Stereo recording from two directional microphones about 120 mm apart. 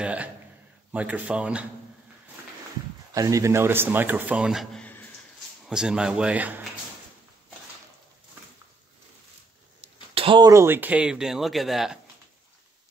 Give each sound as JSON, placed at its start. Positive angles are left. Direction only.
{"t": 0.0, "sound": "a man's voice", "side_deg": -10}
{"t": 3.2, "sound": "a man's voice", "side_deg": -25}
{"t": 4.7, "sound": "a sound", "side_deg": 15}
{"t": 5.7, "sound": "a man's voice", "side_deg": -5}
{"t": 10.1, "sound": "a sound", "side_deg": -45}
{"t": 10.4, "sound": "speech", "side_deg": -25}